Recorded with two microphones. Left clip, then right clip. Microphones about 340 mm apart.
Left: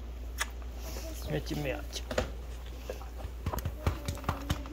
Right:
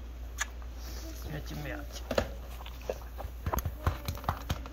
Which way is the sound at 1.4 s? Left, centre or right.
Centre.